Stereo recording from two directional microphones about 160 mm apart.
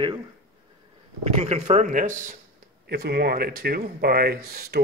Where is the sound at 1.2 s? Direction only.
40° right (ahead or behind).